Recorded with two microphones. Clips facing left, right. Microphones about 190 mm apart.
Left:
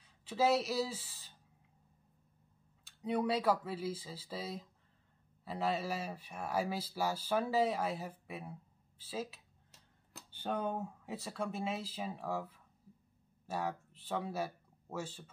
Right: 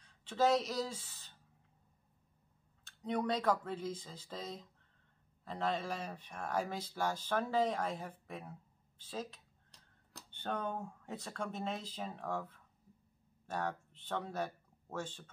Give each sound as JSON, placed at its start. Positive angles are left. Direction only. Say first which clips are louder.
{"t": 0.0, "sound": "speech", "louder": "even", "side_deg": 5}
{"t": 2.8, "sound": "speech", "louder": "left 2 dB", "side_deg": 10}